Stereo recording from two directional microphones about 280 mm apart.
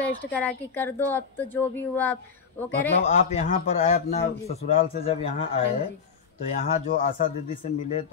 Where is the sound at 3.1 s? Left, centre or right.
Left.